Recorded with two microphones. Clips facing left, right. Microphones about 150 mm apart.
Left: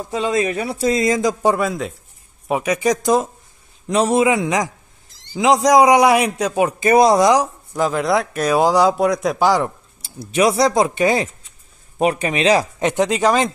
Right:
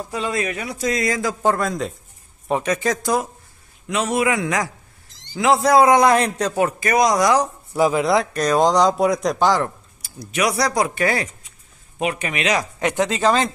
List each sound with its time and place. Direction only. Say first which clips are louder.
0.1 s a man's voice: left 6 dB; 25° left (ahead or behind)
3.8 s a man's voice: left 6 dB; 35° left (ahead or behind)
4.2 s a man's voice: left 4 dB; 20° left (ahead or behind)
6.8 s a man's voice: left 6 dB; 30° left (ahead or behind)
7.4 s speech: right 2 dB; 5° right (ahead or behind); by 9.7 s 10° left (ahead or behind)
10.0 s a man's voice: left 5 dB; 25° left (ahead or behind)
12.0 s a man's voice: left 6 dB; 35° left (ahead or behind); by 13.5 s 15° left (ahead or behind)